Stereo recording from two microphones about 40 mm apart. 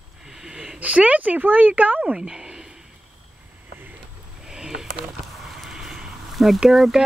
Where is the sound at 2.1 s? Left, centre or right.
Right.